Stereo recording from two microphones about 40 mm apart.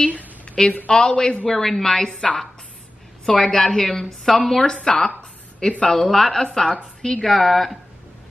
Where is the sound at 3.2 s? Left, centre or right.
Centre.